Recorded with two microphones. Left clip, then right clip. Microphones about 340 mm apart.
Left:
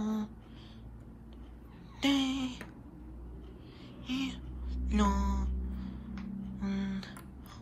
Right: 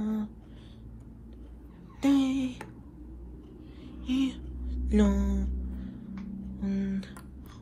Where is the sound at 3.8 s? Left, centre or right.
Centre.